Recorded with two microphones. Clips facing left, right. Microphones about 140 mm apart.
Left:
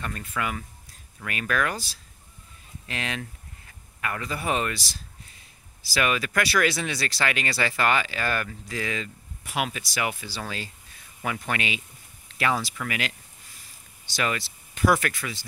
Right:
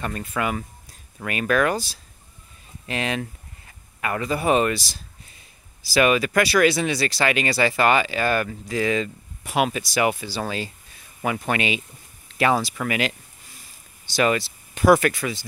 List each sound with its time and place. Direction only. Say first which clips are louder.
0.0 s speech: right 5 dB; 30° right (ahead or behind)
2.9 s speech: right 7 dB; 20° right (ahead or behind)
5.9 s speech: right 7 dB; 15° right (ahead or behind)
12.8 s speech: right 7 dB; 25° right (ahead or behind)
14.1 s speech: right 8 dB; 25° right (ahead or behind)